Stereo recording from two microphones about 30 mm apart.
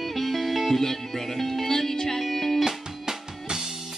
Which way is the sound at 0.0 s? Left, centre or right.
Centre.